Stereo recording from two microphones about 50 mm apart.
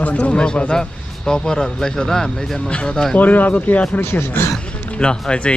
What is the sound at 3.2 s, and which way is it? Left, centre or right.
Speech, left.